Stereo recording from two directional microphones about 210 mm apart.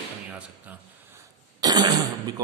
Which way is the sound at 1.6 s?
20° right (ahead or behind).